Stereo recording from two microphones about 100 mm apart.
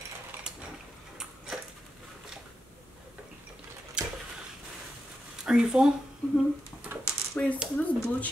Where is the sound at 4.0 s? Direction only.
10° right (ahead or behind).